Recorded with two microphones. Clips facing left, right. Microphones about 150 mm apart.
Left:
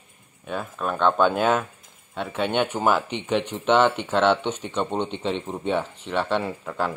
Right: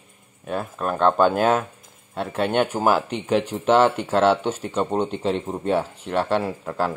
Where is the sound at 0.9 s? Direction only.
40° right (ahead or behind).